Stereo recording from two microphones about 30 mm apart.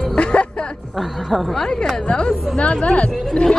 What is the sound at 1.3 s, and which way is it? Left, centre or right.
Speech, centre.